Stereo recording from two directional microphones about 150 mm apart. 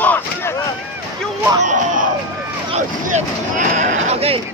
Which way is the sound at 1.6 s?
55° right (ahead or behind).